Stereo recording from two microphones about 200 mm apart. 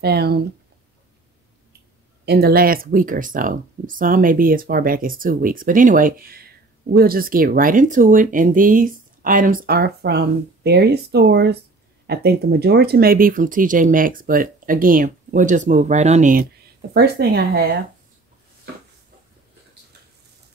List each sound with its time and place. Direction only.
0.0 s speech: 55° right (ahead or behind)
2.2 s speech: 50° right (ahead or behind)
16.9 s speech: 50° right (ahead or behind)